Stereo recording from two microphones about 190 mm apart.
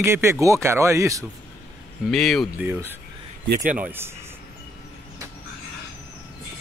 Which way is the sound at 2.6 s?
10° right (ahead or behind).